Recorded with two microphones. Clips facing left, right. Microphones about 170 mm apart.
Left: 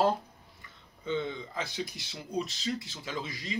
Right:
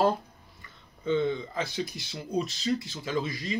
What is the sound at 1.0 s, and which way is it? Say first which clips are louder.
Speech: right 6 dB; 20° left (ahead or behind).